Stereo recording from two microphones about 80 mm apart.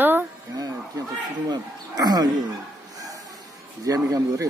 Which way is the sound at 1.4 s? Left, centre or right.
Right.